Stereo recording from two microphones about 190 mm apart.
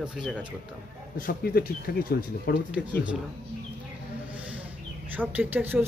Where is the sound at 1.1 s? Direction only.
50° left (ahead or behind).